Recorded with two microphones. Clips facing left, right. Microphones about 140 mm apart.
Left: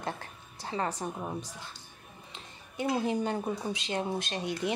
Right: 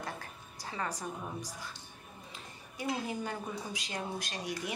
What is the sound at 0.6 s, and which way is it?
Speech, 25° left (ahead or behind).